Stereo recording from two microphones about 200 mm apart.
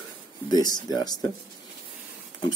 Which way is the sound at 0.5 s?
20° left (ahead or behind).